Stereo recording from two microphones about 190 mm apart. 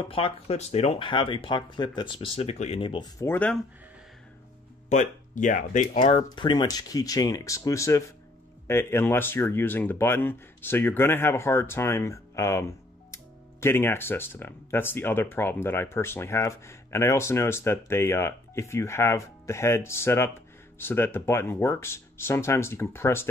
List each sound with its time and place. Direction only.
0.0 s speech: 30° left (ahead or behind); by 3.5 s 10° left (ahead or behind)
4.8 s speech: 40° left (ahead or behind)
5.9 s speech: 25° left (ahead or behind)